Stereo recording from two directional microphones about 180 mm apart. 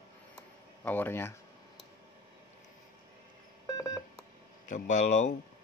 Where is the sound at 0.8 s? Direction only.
10° left (ahead or behind).